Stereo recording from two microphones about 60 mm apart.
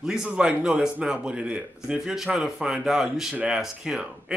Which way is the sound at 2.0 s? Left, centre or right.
Centre.